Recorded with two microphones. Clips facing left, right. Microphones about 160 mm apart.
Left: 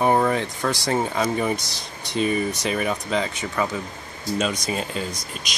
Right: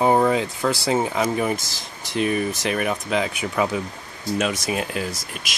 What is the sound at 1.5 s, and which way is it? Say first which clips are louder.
Speech: even; 90° right.